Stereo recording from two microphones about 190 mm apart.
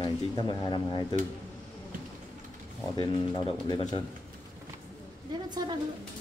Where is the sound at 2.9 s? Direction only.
25° left (ahead or behind).